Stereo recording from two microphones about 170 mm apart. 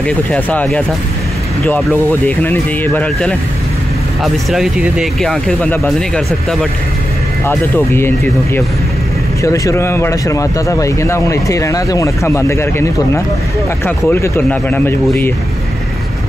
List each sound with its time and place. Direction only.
0.0 s a man's voice: 5° left (ahead or behind)
7.4 s a man's voice: 15° left (ahead or behind)
9.4 s a man's voice: 20° left (ahead or behind)